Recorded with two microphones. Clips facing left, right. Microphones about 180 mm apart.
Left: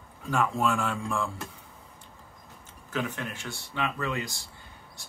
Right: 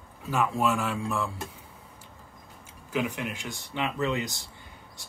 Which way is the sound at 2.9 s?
10° right (ahead or behind).